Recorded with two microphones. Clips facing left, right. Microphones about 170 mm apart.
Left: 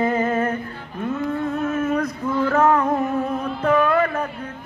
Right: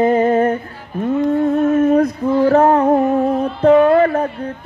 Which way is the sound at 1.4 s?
35° right (ahead or behind).